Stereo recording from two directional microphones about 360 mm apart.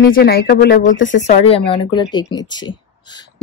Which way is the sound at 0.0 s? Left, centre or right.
Left.